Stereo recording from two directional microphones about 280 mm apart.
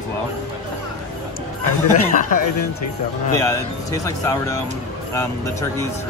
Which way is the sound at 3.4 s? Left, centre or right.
Centre.